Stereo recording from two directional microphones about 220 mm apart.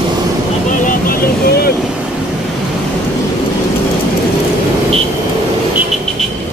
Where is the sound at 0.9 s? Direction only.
40° left (ahead or behind).